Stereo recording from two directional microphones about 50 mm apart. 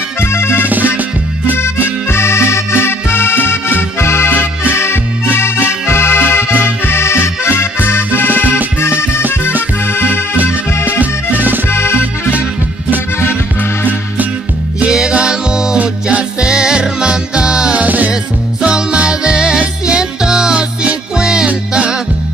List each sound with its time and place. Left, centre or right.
0.2 s music: left
0.7 s music: right
2.0 s music: left
4.3 s music: left
7.9 s music: left
9.9 s music: left
11.3 s music: right
11.7 s music: left
12.0 s music: right
14.9 s music: centre
17.7 s music: right
18.6 s music: centre